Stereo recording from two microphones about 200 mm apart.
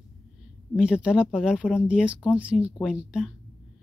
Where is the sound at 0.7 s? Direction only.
5° right (ahead or behind).